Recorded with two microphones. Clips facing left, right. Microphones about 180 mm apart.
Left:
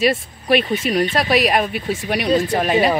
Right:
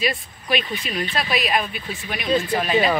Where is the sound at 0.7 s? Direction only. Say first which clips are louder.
Left 9 dB; 40° left (ahead or behind).